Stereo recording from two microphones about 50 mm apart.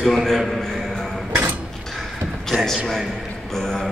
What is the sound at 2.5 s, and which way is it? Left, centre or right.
A man's voice, centre.